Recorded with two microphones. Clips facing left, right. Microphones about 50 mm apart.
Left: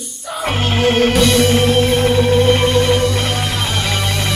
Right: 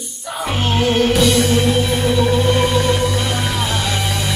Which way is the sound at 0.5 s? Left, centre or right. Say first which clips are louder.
Left 2 dB; left.